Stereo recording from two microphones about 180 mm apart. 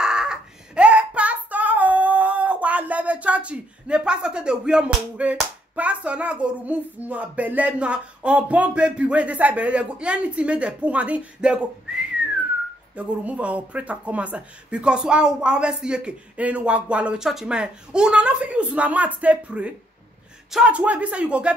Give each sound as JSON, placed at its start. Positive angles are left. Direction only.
{"t": 0.0, "sound": "child singing", "side_deg": -5}
{"t": 12.9, "sound": "speech", "side_deg": -10}